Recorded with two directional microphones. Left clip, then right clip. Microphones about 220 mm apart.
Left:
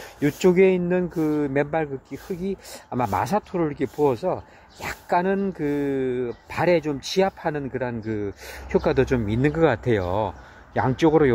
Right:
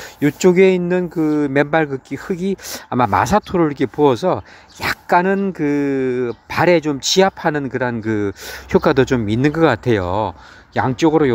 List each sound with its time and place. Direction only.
0.0 s speech: 15° right (ahead or behind)